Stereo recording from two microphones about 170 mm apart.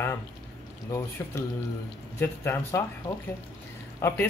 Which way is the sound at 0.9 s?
15° left (ahead or behind).